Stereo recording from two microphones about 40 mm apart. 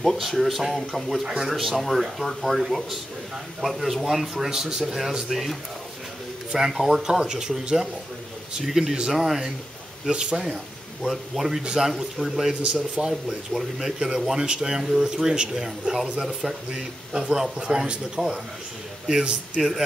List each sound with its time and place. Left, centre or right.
0.2 s speech: centre
3.6 s a man's voice: centre
6.7 s a man's voice: centre
11.0 s a man's voice: centre
11.6 s a man's voice: centre
13.1 s a man's voice: centre
17.1 s a man's voice: centre
19.6 s a man's voice: centre